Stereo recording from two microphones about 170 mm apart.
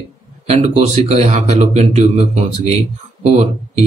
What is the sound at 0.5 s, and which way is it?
Speech, 40° right (ahead or behind).